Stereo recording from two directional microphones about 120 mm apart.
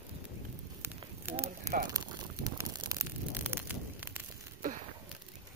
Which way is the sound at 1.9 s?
30° right (ahead or behind).